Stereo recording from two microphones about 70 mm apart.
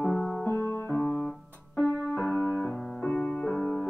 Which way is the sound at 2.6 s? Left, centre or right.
Centre.